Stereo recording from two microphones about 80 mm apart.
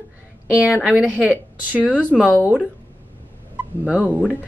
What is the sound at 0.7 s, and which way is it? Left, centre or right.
Speech, centre.